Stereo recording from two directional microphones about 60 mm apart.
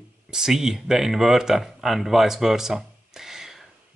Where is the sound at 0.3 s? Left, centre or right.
Centre.